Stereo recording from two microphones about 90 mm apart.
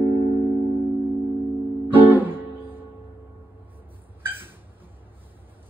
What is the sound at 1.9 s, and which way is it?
Music, 20° right (ahead or behind).